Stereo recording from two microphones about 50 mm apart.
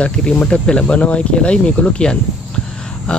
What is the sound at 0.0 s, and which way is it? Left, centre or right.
Speech, left.